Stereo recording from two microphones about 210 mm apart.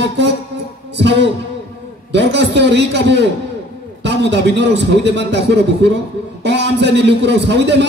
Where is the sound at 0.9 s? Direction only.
55° right (ahead or behind).